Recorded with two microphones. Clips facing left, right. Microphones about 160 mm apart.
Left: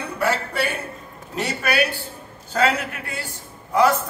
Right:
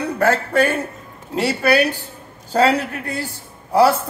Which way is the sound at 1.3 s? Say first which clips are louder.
Right 6 dB; 30° right (ahead or behind).